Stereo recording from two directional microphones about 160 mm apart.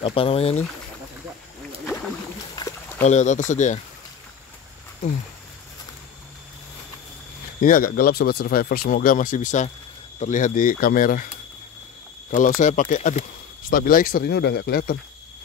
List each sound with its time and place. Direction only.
0.0 s speech: 35° left (ahead or behind)
2.5 s a sound: 20° left (ahead or behind)
3.0 s speech: 45° left (ahead or behind)
7.6 s speech: 60° left (ahead or behind)
12.3 s speech: 55° left (ahead or behind)
13.7 s speech: 65° left (ahead or behind)